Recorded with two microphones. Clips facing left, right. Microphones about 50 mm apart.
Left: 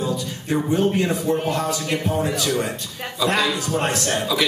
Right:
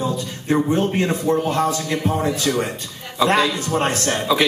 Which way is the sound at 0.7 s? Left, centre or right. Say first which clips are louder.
Even; right.